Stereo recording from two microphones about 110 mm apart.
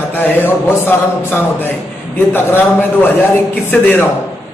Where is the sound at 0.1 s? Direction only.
20° left (ahead or behind).